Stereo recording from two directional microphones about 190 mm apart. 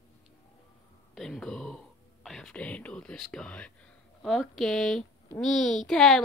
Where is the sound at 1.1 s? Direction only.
Centre (ahead or behind).